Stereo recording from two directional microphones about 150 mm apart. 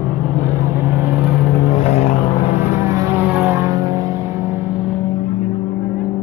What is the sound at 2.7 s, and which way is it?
Vehicle, 20° right (ahead or behind).